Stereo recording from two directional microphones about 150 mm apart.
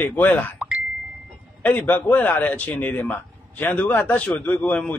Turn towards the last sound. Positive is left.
turn(degrees=10)  # may be behind; listen again after turning